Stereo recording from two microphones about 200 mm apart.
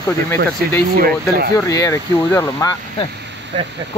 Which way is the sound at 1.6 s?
15° left (ahead or behind).